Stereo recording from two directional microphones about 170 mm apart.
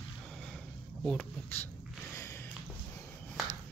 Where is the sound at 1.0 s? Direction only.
5° left (ahead or behind).